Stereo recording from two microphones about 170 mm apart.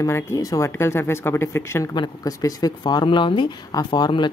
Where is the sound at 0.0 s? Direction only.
15° left (ahead or behind).